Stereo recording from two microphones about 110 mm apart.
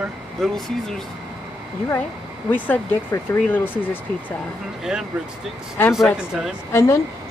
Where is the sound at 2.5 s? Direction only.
15° left (ahead or behind).